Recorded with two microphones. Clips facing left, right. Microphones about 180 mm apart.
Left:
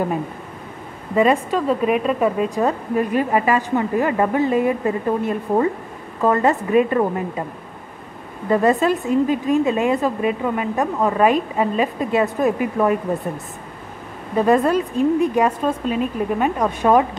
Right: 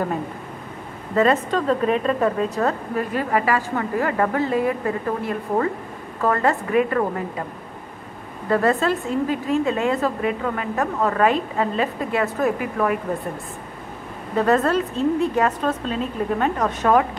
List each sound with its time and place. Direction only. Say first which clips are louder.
1.1 s speech: left 2 dB; 15° left (ahead or behind)
8.5 s a woman's voice: left 3 dB; 15° left (ahead or behind)
14.3 s a woman's voice: left 2 dB; 10° left (ahead or behind)